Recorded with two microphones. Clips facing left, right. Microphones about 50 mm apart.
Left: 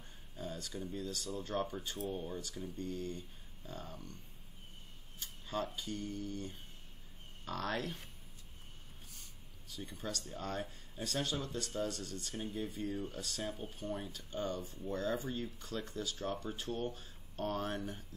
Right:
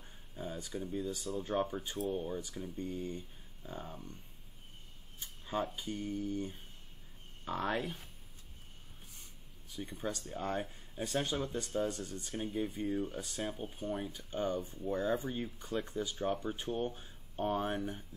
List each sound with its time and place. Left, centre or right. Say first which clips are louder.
0.4 s speech: right 2 dB; centre
5.2 s a sound: right 3 dB; centre
5.8 s speech: right 3 dB; centre
9.7 s speech: right 4 dB; centre